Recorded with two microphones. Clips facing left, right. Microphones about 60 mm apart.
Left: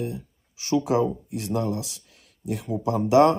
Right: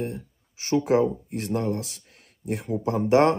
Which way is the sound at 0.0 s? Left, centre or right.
Right.